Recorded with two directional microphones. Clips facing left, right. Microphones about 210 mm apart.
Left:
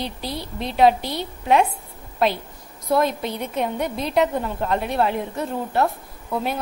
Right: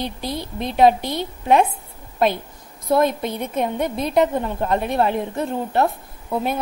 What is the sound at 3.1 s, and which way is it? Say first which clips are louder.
A woman's voice: right 2 dB; 50° right (ahead or behind).